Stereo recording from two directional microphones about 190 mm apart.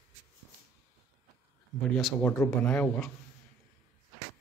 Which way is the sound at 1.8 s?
Centre (ahead or behind).